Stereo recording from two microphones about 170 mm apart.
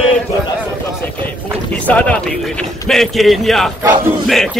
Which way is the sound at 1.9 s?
5° left (ahead or behind).